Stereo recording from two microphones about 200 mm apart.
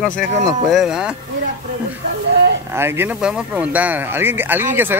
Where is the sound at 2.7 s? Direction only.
10° right (ahead or behind).